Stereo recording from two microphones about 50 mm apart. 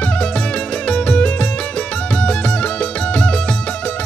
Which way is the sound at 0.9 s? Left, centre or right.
Left.